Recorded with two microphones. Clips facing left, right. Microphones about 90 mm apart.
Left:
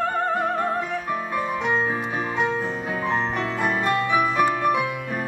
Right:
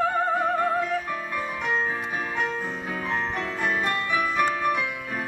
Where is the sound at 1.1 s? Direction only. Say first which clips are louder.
Left 4 dB; 20° left (ahead or behind).